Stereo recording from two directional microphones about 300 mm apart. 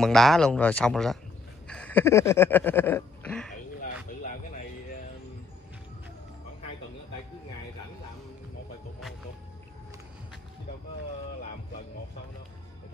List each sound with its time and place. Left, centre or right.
0.0 s speech: centre
1.7 s a sound: centre
4.2 s music: left